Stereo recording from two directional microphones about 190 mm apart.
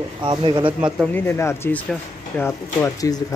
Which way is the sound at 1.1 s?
15° left (ahead or behind).